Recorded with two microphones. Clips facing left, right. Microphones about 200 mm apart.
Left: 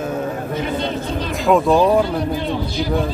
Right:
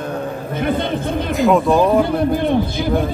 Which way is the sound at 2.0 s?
55° right (ahead or behind).